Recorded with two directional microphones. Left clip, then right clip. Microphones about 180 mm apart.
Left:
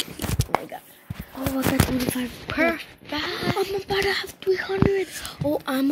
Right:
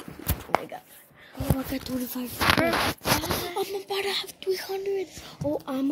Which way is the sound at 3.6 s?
30° left (ahead or behind).